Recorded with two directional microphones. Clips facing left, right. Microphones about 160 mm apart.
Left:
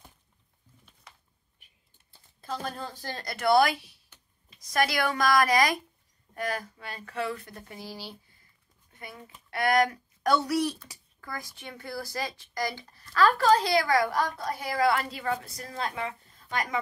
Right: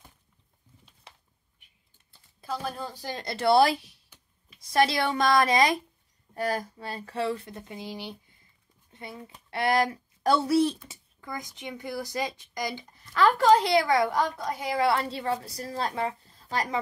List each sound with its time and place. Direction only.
1.1 s a sound: 30° right (ahead or behind)
2.4 s speech: 10° right (ahead or behind)
3.2 s a woman's voice: 25° right (ahead or behind)